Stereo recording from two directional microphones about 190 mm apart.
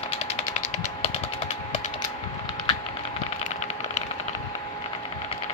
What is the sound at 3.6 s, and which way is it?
Typing, 35° left (ahead or behind).